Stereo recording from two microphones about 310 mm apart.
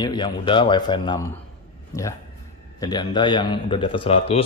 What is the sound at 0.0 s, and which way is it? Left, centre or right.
A man's voice, centre.